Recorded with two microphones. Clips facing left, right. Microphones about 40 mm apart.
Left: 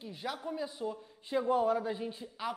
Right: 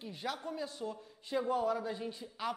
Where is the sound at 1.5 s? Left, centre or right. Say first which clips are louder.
Left 5 dB; left.